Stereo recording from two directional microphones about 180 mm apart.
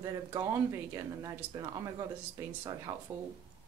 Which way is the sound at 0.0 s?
20° right (ahead or behind).